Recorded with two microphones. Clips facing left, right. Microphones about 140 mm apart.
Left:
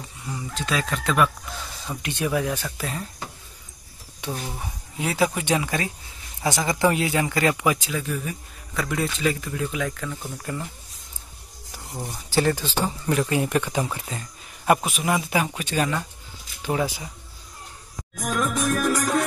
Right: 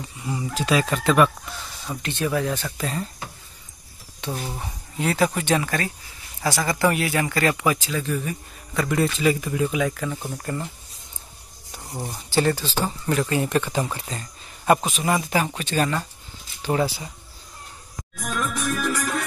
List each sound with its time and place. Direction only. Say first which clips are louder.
0.2 s speech: right 5 dB; 10° right (ahead or behind)
2.0 s speech: right 1 dB; 15° left (ahead or behind)
4.3 s speech: right 1 dB; 5° right (ahead or behind)
4.9 s speech: right 1 dB; 10° left (ahead or behind); by 10.0 s 10° right (ahead or behind)
10.0 s speech: right 3 dB; 20° right (ahead or behind)
10.3 s speech: right 2 dB; centre (ahead or behind)
12.3 s speech: right 1 dB; 10° left (ahead or behind)
18.1 s music: left 3 dB; 40° left (ahead or behind)